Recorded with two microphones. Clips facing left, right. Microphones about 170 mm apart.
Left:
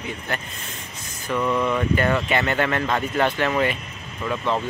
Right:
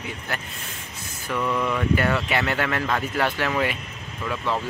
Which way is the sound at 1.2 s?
10° left (ahead or behind).